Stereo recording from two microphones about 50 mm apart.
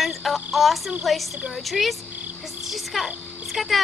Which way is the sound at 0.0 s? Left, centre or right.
Centre.